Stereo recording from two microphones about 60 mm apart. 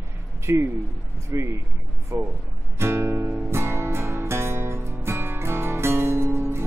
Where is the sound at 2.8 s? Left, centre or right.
Right.